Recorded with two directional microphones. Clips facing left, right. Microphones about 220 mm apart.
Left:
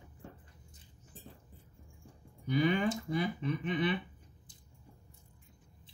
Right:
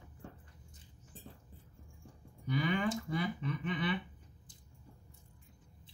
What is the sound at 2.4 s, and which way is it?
Speech, 20° left (ahead or behind).